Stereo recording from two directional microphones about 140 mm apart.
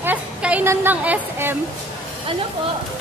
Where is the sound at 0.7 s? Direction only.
10° right (ahead or behind).